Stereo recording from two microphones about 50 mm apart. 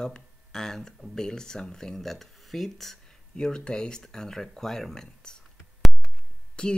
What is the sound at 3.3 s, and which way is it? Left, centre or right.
Speech, centre.